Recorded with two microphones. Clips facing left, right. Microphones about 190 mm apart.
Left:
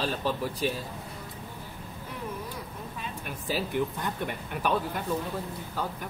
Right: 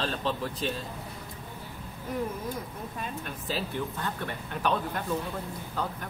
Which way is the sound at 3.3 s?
10° left (ahead or behind).